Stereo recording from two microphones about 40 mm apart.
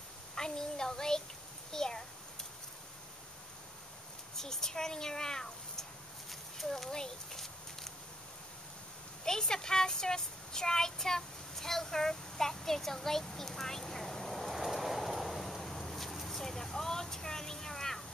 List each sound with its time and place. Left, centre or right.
0.4 s child singing: centre
1.7 s speech: centre
4.4 s speech: centre
6.9 s a sound: centre
9.2 s child singing: centre